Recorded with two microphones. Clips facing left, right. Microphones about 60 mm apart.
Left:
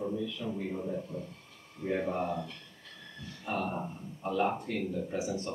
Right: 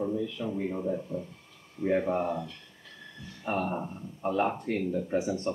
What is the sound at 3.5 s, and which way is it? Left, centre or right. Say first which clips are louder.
Speech: right 3 dB; right.